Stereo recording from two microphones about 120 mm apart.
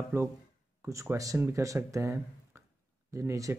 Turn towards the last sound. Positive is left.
turn(degrees=-25)  # may be behind; listen again after turning